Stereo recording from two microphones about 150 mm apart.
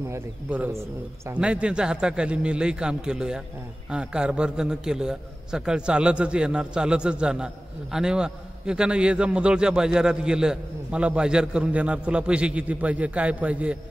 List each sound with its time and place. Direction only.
0.1 s a man's voice: 15° right (ahead or behind)